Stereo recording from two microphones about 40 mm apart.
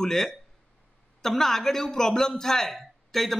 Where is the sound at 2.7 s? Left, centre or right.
Centre.